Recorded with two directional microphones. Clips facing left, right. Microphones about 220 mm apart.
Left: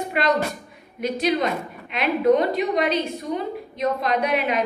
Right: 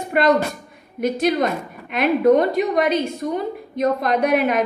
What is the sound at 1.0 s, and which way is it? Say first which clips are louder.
A woman's voice: right 3 dB; 50° right (ahead or behind).